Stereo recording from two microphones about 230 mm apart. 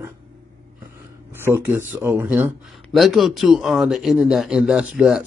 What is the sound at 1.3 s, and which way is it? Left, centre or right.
Speech, centre.